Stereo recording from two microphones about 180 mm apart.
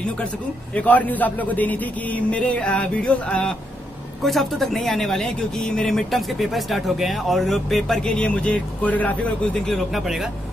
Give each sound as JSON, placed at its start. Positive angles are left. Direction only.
{"t": 0.7, "sound": "a man's voice", "side_deg": 10}